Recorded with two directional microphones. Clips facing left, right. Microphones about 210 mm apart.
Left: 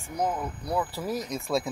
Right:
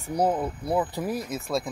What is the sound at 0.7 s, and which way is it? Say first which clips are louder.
Speech: right 2 dB; 20° right (ahead or behind).